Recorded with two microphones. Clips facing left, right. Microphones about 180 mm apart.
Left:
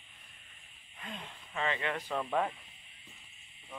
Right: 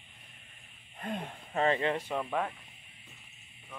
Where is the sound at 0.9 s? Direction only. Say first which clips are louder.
Right 8 dB; 50° right (ahead or behind); by 2.1 s 25° right (ahead or behind).